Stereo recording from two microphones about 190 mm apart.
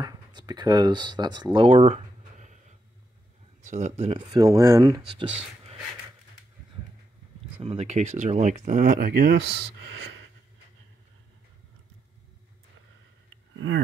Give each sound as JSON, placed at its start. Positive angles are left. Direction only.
{"t": 0.0, "sound": "speech", "side_deg": -20}
{"t": 3.6, "sound": "speech", "side_deg": -40}
{"t": 7.5, "sound": "speech", "side_deg": -30}
{"t": 9.8, "sound": "a sound", "side_deg": -90}